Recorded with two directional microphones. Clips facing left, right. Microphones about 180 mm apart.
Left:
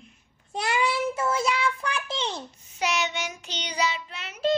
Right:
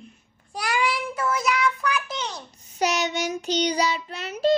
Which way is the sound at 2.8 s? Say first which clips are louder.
Right 4 dB; 40° right (ahead or behind).